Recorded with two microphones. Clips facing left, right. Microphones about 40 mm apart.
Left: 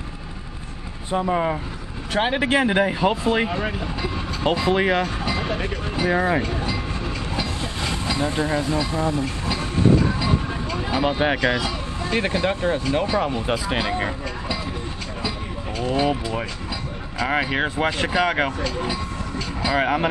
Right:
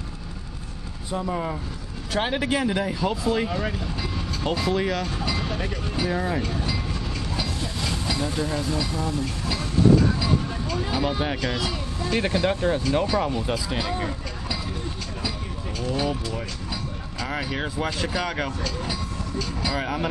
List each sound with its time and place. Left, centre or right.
1.1 s speech: left
3.4 s vehicle: left
4.5 s speech: left
6.4 s train: centre
11.0 s speech: left
15.8 s speech: left
18.6 s vehicle: centre